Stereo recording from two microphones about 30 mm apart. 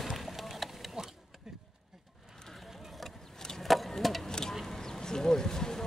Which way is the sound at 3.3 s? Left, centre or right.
Centre.